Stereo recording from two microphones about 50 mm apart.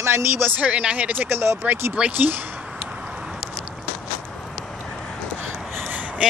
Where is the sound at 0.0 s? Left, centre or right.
Right.